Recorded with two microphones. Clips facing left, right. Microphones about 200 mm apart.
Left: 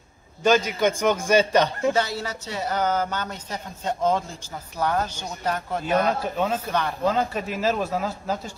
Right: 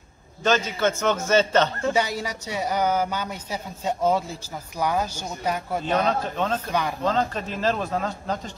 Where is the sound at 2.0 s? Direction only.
10° right (ahead or behind).